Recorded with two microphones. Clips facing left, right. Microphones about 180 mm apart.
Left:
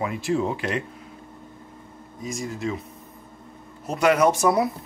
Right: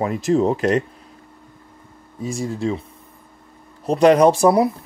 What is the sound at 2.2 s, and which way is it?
Speech, 30° right (ahead or behind).